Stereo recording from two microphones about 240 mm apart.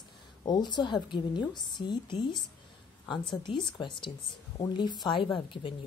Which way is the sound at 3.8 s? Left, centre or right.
Centre.